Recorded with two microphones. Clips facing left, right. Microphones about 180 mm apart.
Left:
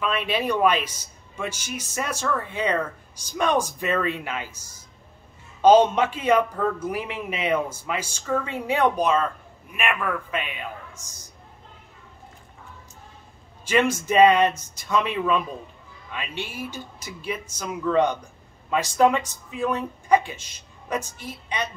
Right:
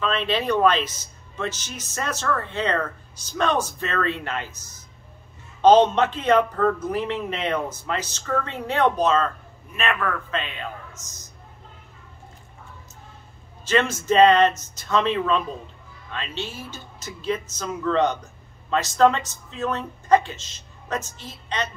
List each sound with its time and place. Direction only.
0.0 s speech: 10° left (ahead or behind)
13.7 s speech: 10° left (ahead or behind)